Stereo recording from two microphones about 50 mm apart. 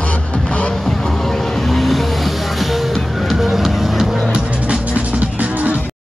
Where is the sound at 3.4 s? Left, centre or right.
Centre.